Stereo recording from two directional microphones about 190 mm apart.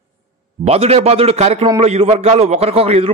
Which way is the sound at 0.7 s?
30° right (ahead or behind).